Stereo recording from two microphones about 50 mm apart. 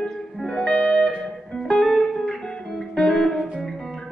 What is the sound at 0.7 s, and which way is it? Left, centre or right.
Music, centre.